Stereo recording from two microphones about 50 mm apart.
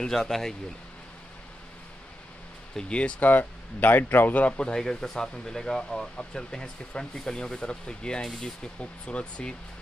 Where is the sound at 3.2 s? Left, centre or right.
Left.